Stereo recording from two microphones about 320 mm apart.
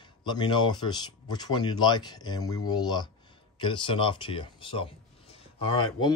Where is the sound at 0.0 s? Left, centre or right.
Centre.